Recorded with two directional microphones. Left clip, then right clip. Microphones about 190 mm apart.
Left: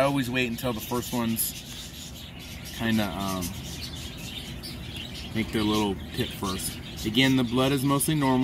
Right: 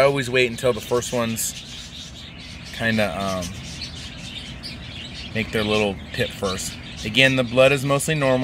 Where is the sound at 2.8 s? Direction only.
45° right (ahead or behind).